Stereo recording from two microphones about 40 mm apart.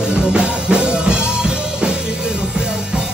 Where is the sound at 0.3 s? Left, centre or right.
Right.